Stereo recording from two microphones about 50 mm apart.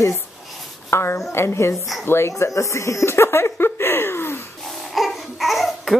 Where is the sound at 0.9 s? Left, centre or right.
Left.